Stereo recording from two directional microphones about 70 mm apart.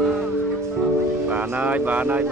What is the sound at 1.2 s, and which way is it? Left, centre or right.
Music, right.